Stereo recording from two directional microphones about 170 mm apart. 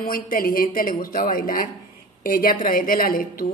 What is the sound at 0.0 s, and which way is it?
A woman's voice, 55° left (ahead or behind).